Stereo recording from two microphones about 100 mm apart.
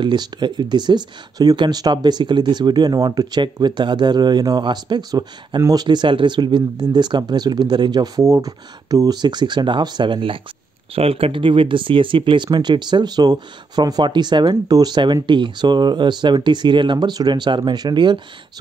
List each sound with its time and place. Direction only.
0.0 s speech: 50° right (ahead or behind)
11.0 s speech: 75° right (ahead or behind); by 18.2 s 50° right (ahead or behind)